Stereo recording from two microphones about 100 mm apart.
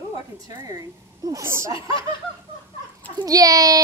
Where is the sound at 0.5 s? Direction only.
35° right (ahead or behind).